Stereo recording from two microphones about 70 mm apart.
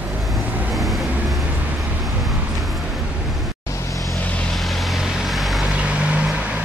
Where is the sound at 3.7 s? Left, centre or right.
Left.